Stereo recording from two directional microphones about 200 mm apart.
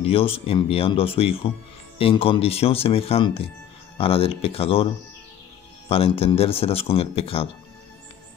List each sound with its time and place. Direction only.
0.0 s speech: 30° left (ahead or behind)
5.9 s speech: 30° left (ahead or behind)